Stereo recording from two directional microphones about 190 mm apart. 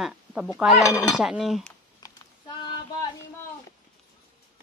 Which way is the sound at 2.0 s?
20° left (ahead or behind).